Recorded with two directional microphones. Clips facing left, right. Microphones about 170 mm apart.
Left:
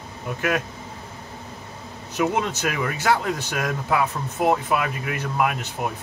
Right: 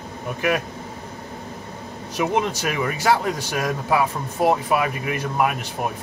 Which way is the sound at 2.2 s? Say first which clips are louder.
Right 1 dB; 10° right (ahead or behind).